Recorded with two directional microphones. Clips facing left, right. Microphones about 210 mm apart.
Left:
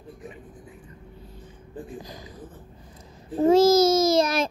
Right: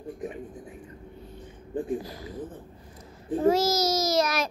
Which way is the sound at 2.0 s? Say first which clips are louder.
Right 3 dB; 20° left (ahead or behind).